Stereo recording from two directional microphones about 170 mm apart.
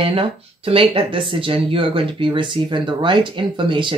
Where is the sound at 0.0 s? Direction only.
30° right (ahead or behind).